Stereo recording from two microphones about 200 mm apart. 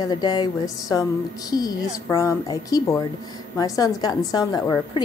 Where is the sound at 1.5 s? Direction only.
20° left (ahead or behind).